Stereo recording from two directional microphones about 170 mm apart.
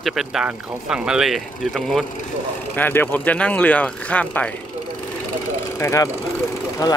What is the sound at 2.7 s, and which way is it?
Speech, 10° left (ahead or behind).